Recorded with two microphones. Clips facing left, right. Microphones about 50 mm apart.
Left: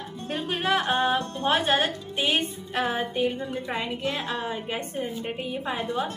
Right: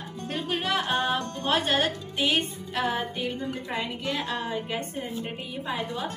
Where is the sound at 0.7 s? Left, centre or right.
Centre.